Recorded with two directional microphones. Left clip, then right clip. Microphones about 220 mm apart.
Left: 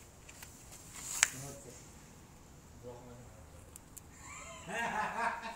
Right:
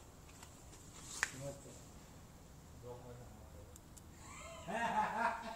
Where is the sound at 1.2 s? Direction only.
50° left (ahead or behind).